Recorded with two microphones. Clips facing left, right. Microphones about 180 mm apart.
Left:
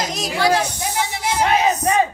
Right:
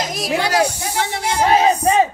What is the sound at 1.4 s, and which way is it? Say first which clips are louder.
Speech: right 4 dB; 30° right (ahead or behind).